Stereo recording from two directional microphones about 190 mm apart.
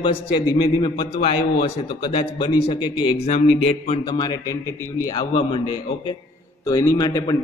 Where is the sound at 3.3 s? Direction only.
40° left (ahead or behind).